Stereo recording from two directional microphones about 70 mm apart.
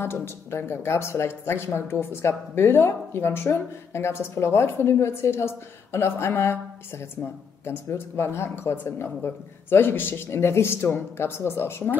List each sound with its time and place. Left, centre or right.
0.0 s speech: left
7.6 s speech: left